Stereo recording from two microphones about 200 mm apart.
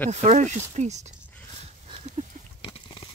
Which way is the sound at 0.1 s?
35° right (ahead or behind).